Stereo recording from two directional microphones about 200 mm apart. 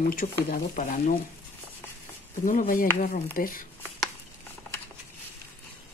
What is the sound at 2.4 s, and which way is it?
Speech, 45° left (ahead or behind).